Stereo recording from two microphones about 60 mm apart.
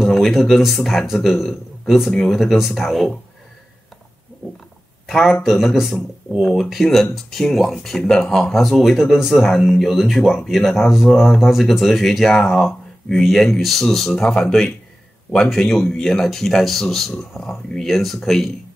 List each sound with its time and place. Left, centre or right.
0.0 s speech: centre
5.0 s speech: centre